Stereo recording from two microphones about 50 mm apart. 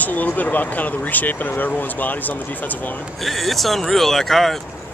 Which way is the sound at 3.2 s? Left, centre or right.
Centre.